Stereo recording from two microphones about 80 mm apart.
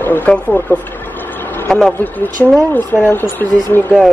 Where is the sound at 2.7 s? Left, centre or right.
Left.